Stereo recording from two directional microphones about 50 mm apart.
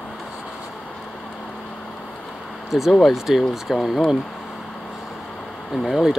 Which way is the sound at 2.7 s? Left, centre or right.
Centre.